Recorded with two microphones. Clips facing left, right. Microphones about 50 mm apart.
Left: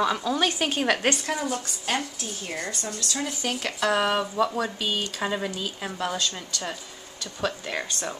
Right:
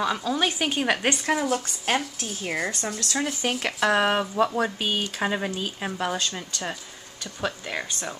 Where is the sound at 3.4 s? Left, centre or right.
Right.